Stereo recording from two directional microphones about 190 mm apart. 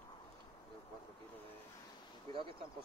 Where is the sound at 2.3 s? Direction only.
25° right (ahead or behind).